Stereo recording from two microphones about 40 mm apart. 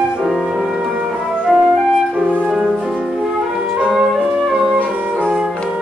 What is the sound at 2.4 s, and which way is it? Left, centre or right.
Music, right.